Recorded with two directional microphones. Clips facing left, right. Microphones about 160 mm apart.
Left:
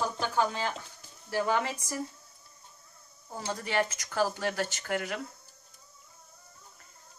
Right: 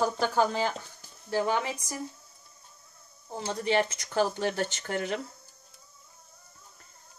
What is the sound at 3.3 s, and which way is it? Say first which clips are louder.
Speech: right 3 dB; 25° right (ahead or behind).